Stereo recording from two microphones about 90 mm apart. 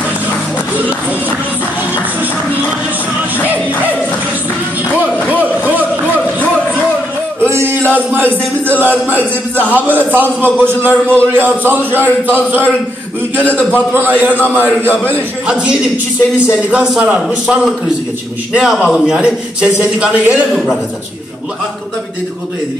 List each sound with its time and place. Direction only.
5.3 s a sound: 20° right (ahead or behind)
7.4 s music: 30° right (ahead or behind)
7.9 s a man's voice: 20° right (ahead or behind)
13.5 s a man's voice: 15° left (ahead or behind)
13.9 s a man's voice: 20° right (ahead or behind)
15.4 s a man's voice: 10° right (ahead or behind)
20.5 s a man's voice: centre (ahead or behind)